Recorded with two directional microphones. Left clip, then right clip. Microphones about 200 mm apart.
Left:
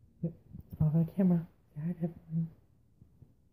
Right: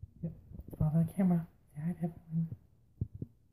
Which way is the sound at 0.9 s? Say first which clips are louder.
Left 2 dB; 25° left (ahead or behind).